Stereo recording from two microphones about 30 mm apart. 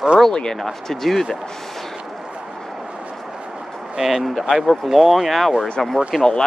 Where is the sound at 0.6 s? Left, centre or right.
Centre.